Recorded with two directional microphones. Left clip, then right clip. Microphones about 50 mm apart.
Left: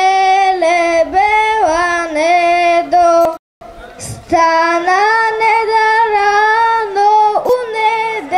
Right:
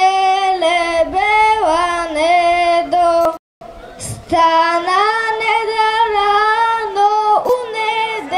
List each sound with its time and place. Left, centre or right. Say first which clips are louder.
0.0 s child singing: left 3 dB; right
4.3 s child singing: left 1 dB; centre
5.4 s female singing: left 4 dB; centre